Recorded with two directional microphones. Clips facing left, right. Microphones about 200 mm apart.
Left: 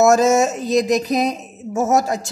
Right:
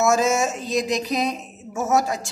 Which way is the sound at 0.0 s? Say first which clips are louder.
Left 6 dB; 40° left (ahead or behind).